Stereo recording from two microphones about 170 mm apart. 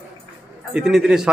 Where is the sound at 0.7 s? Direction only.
5° right (ahead or behind).